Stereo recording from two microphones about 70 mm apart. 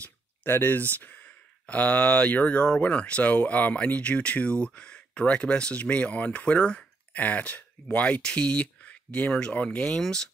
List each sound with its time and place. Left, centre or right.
0.5 s speech: left; by 10.3 s centre